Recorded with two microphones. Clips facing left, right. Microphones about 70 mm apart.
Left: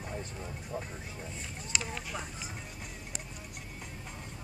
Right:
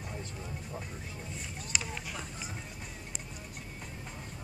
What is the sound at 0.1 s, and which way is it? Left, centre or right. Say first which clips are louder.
Vehicle: left 2 dB; centre.